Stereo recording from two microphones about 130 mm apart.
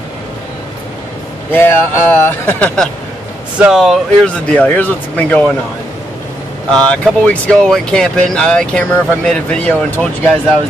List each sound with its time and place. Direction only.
1.5 s speech: 15° left (ahead or behind)
3.5 s speech: 5° right (ahead or behind)
4.5 s speech: 10° left (ahead or behind)
6.7 s speech: 10° left (ahead or behind)